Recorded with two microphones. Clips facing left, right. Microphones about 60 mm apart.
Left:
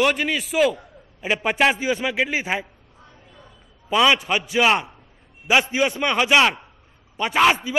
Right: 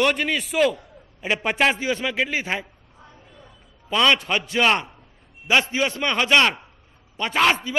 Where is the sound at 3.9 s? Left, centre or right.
Centre.